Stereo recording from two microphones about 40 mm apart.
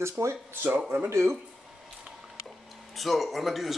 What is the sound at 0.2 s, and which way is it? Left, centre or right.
Speech, right.